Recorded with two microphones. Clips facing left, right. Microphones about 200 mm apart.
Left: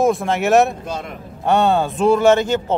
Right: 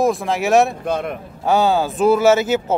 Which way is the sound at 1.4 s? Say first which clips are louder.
Even; centre (ahead or behind).